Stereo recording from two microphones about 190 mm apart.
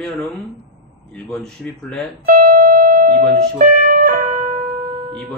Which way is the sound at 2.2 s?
50° right (ahead or behind).